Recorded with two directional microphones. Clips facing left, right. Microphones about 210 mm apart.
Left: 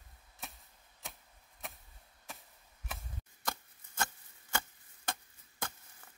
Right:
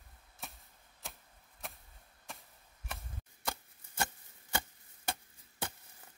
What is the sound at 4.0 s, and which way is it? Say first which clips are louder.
Chopping: right 1 dB; 15° right (ahead or behind).